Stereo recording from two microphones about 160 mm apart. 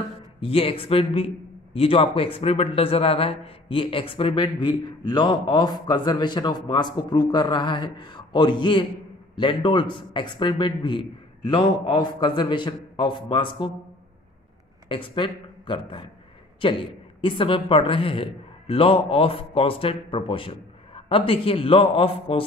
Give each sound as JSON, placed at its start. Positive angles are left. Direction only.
{"t": 0.4, "sound": "a man's voice", "side_deg": 35}
{"t": 14.9, "sound": "a man's voice", "side_deg": 30}